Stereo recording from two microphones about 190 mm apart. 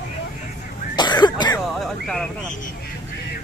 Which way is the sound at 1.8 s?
Centre (ahead or behind).